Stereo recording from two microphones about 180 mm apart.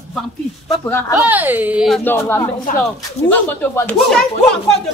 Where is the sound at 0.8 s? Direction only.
15° left (ahead or behind).